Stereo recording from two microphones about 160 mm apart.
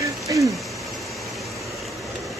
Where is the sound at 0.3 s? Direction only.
25° right (ahead or behind).